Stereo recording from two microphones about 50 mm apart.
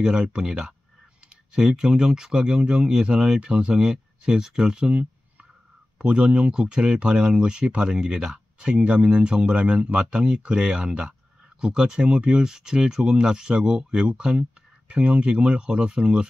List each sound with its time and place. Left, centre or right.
0.0 s speech: centre